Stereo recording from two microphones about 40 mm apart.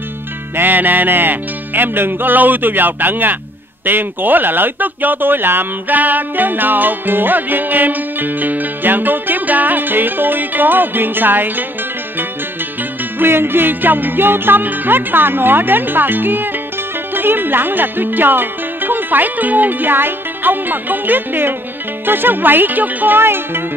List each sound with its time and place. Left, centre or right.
0.6 s music: right
3.8 s speech: right
13.2 s music: right
17.1 s speech: right
22.0 s music: right
23.1 s music: right